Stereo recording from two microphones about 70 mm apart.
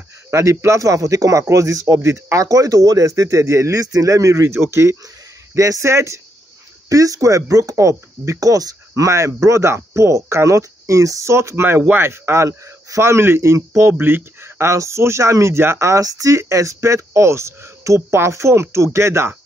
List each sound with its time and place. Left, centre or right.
0.3 s speech: right